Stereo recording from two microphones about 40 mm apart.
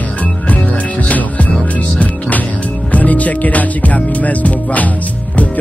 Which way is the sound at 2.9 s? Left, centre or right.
Left.